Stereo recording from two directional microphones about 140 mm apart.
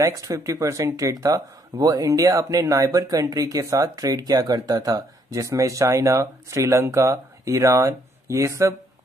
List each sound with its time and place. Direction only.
0.0 s speech: 25° right (ahead or behind)